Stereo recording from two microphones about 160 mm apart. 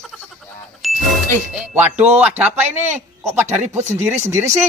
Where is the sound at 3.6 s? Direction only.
45° right (ahead or behind).